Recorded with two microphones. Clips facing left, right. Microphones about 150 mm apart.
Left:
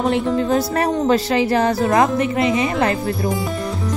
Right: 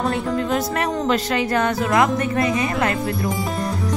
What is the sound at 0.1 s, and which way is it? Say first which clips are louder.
Speech: left 4 dB; 30° left (ahead or behind).